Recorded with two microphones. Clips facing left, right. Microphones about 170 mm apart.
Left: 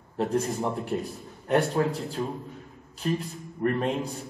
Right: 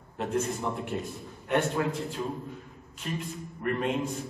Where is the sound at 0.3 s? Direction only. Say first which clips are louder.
Even; 35° left (ahead or behind).